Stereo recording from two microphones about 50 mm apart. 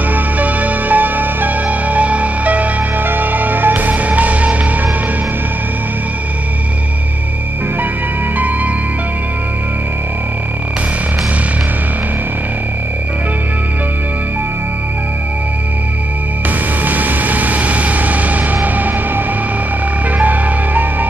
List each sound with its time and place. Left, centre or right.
0.1 s music: right
16.4 s music: right